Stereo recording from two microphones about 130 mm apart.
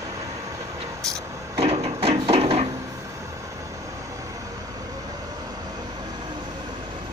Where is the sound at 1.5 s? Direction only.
50° right (ahead or behind).